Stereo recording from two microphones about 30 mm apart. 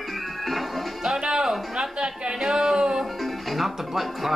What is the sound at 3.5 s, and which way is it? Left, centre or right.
Music, centre.